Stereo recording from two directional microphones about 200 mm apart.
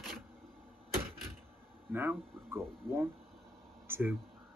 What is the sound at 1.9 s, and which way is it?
Speech, 10° right (ahead or behind).